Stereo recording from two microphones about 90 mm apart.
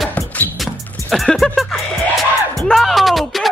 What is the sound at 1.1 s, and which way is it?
Music, 5° left (ahead or behind).